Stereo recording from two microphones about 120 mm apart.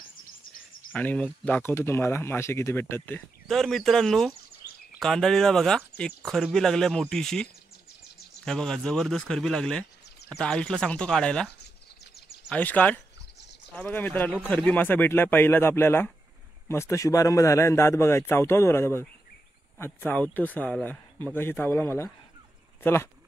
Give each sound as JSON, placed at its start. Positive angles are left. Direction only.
{"t": 0.9, "sound": "speech", "side_deg": 10}
{"t": 3.4, "sound": "speech", "side_deg": 0}
{"t": 8.5, "sound": "speech", "side_deg": 5}